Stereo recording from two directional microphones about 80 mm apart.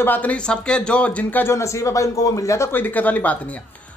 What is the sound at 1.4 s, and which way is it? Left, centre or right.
Speech, left.